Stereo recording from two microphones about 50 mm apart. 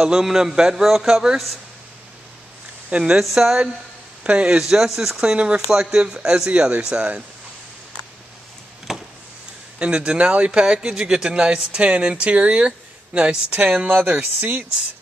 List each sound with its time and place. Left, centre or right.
0.0 s a man's voice: centre
3.2 s a man's voice: centre
4.2 s speech: right
4.6 s a man's voice: centre
5.2 s a man's voice: right
8.9 s a sound: centre
9.8 s speech: right